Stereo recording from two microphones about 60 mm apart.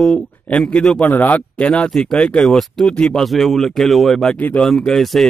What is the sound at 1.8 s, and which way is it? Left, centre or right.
A man's voice, centre.